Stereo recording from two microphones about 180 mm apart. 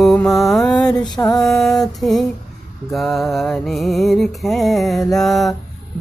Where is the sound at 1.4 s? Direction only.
Centre (ahead or behind).